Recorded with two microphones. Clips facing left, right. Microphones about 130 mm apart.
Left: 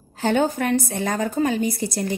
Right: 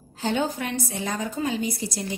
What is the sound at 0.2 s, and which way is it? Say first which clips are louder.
A woman's voice: left 5 dB; 55° left (ahead or behind).